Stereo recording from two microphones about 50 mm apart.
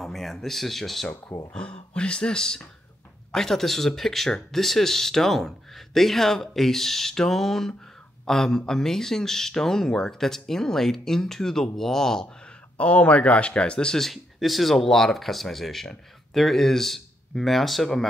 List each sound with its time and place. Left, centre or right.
0.0 s speech: centre
1.5 s speech: left
12.4 s speech: left; by 18.0 s centre